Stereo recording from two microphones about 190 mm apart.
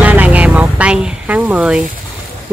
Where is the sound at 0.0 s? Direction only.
10° right (ahead or behind).